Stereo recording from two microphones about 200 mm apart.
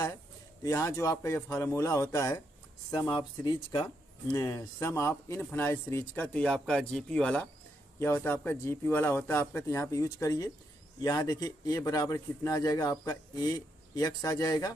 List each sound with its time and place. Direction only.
0.6 s speech: 15° left (ahead or behind)